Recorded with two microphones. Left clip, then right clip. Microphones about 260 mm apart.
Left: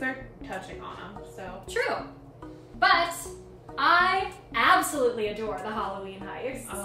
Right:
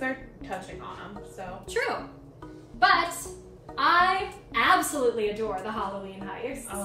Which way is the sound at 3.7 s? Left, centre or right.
Centre.